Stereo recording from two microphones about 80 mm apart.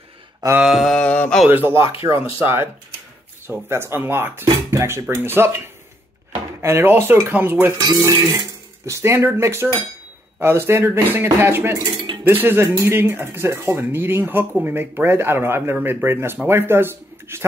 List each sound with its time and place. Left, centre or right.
0.6 s mantra: centre
0.9 s mantra: centre
1.5 s speech: right
2.0 s cutlery: right
2.2 s speech: right
6.6 s speech: right
7.7 s cutlery: right
10.4 s speech: right
16.4 s cutlery: right